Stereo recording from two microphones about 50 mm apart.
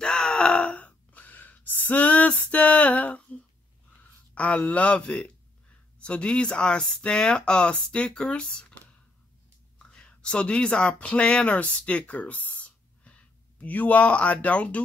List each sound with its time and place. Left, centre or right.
0.0 s groan: centre; by 3.2 s left
4.4 s speech: left